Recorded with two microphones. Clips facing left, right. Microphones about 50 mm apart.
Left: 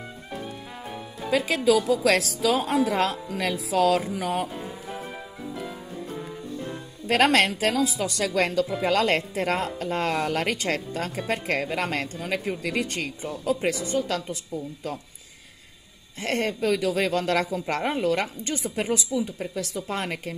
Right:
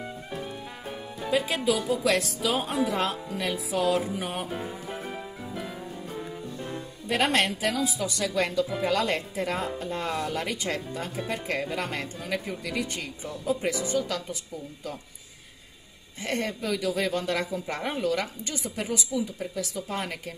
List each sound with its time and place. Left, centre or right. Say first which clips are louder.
1.3 s a woman's voice: left 4 dB; left
5.6 s music: even; centre
7.1 s speech: left 5 dB; left
7.7 s speech: left 4 dB; left
8.8 s speech: left 4 dB; left
11.9 s speech: left 4 dB; left
12.3 s speech: left 3 dB; left
16.2 s speech: left 4 dB; left